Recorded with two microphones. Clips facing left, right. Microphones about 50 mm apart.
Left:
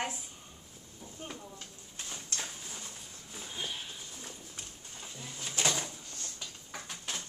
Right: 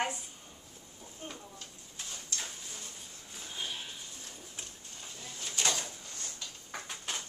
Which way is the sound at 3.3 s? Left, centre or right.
Centre.